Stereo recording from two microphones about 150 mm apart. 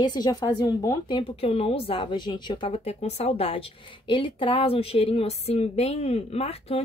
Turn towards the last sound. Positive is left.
turn(degrees=40)  # may be behind; listen again after turning